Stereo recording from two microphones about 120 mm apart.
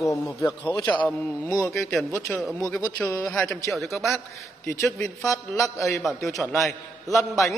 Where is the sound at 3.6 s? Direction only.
Centre (ahead or behind).